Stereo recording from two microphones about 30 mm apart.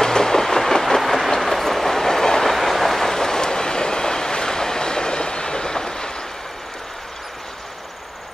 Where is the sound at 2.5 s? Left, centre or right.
Centre; by 6.1 s left.